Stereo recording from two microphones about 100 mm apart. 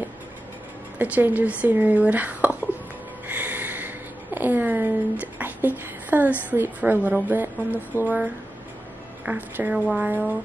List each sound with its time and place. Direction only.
0.9 s speech: 15° right (ahead or behind)
3.3 s a sound: 20° right (ahead or behind)
6.5 s a woman's voice: 20° right (ahead or behind)